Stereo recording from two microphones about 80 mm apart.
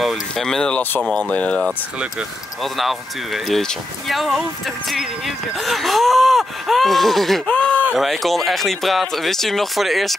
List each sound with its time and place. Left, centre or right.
0.0 s speech: centre
2.6 s speech: centre